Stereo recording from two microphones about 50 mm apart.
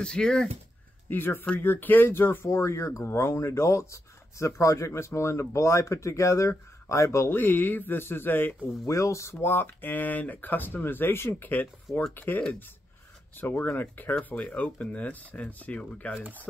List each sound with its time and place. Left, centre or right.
0.0 s speech: centre
1.1 s speech: left
2.4 s speech: left
7.2 s speech: left
8.8 s speech: left
9.4 s speech: left
16.2 s speech: right